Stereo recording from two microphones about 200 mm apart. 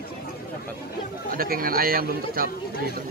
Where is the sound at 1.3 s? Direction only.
45° right (ahead or behind).